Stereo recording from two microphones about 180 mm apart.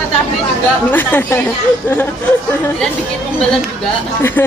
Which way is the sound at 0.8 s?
10° left (ahead or behind).